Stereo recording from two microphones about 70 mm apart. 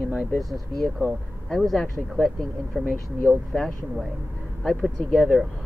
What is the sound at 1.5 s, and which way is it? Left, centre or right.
Speech, centre.